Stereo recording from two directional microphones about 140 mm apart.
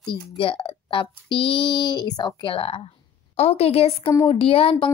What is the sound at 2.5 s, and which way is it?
Speech, 40° left (ahead or behind).